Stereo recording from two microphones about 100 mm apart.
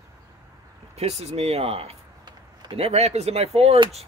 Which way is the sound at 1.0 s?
90° right.